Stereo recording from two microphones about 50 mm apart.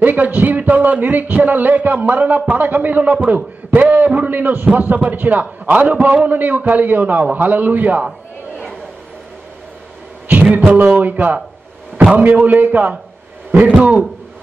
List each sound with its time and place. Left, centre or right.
0.0 s a man's voice: right
10.2 s a man's voice: right